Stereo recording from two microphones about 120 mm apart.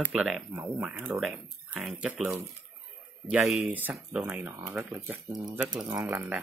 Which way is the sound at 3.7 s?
15° right (ahead or behind).